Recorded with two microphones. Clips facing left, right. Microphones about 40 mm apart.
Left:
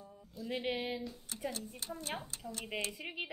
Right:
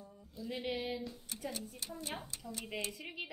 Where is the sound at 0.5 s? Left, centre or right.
Centre.